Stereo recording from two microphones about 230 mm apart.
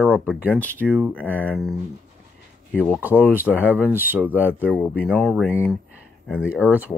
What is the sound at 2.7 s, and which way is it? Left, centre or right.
Speech, centre.